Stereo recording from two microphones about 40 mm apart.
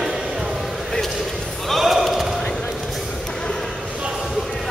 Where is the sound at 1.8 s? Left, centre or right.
Centre.